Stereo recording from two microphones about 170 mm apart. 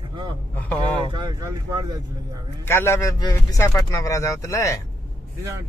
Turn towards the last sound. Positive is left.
turn(degrees=15)  # may be behind; listen again after turning